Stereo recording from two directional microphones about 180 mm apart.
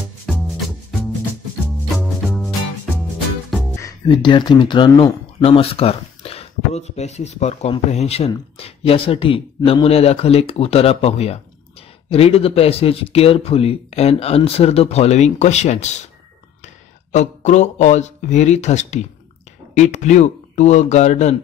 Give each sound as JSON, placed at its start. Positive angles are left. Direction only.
{"t": 2.0, "sound": "music", "side_deg": -5}
{"t": 3.7, "sound": "speech", "side_deg": 20}
{"t": 17.1, "sound": "speech", "side_deg": 40}